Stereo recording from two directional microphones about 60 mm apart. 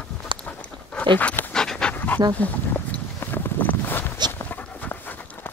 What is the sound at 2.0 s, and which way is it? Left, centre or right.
Dog, left.